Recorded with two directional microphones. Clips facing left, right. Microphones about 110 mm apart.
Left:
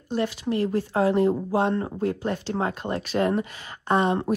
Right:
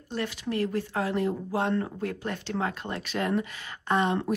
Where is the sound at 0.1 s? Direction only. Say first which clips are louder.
Left 5 dB; 30° left (ahead or behind).